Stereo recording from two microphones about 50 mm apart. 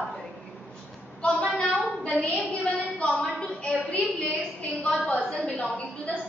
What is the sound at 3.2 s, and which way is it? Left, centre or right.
A woman's voice, centre.